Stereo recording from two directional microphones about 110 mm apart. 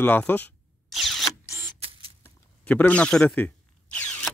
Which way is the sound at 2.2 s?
15° left (ahead or behind).